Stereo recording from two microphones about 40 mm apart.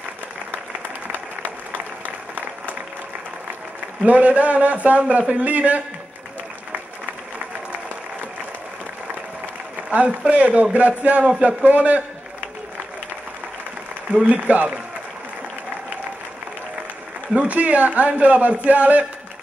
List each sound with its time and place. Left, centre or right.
4.0 s a man's voice: right
9.8 s a man's voice: right
14.2 s a man's voice: right
17.4 s a man's voice: right